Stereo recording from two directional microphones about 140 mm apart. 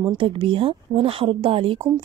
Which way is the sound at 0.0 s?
40° right (ahead or behind).